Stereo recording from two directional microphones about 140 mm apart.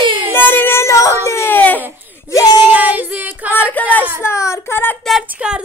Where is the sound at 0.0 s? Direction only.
35° right (ahead or behind).